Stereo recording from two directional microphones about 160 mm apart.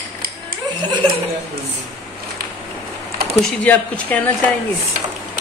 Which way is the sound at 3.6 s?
10° left (ahead or behind).